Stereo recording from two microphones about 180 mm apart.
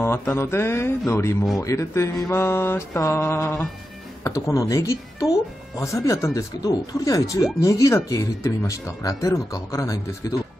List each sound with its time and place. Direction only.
0.0 s speech: 15° left (ahead or behind)